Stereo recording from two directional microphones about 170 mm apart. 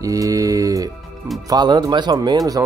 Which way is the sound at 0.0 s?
20° right (ahead or behind).